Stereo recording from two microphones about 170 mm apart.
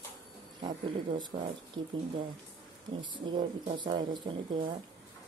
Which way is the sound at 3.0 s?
30° right (ahead or behind).